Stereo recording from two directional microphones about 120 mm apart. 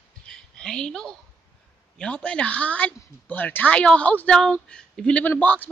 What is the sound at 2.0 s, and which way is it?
A woman's voice, 10° left (ahead or behind).